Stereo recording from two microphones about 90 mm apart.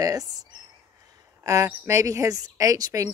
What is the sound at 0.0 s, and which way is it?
Speech, 45° right (ahead or behind).